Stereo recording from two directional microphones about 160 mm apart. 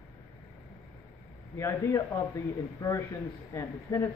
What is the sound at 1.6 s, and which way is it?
Speech, 15° left (ahead or behind).